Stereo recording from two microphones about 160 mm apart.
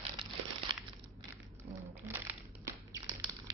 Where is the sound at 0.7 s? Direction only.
25° right (ahead or behind).